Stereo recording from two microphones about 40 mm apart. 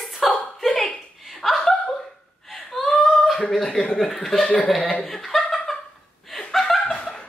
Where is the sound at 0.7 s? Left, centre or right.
Left.